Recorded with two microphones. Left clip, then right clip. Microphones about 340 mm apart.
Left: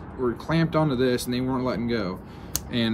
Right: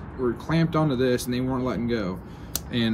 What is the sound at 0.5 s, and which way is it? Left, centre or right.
Speech, centre.